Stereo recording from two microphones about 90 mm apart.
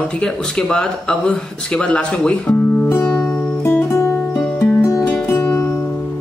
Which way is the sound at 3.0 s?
10° left (ahead or behind).